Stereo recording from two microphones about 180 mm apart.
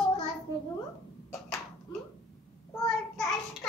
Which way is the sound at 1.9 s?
25° left (ahead or behind).